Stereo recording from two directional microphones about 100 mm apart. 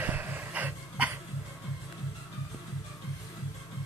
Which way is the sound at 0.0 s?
20° right (ahead or behind).